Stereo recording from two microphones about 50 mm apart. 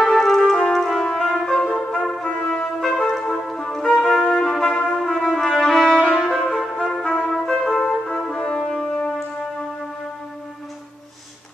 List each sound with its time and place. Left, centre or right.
0.0 s music: centre
0.7 s trumpet: centre; by 2.5 s left
2.8 s trumpet: centre
5.0 s trumpet: centre
6.2 s music: centre
6.8 s trumpet: centre
7.6 s brass instrument: centre